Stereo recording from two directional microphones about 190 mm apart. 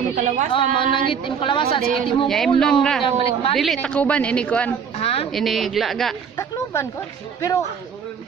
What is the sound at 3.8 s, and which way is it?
Speech, 5° left (ahead or behind).